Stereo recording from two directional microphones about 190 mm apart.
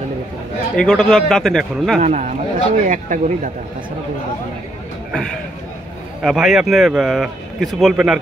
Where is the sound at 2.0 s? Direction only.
35° right (ahead or behind).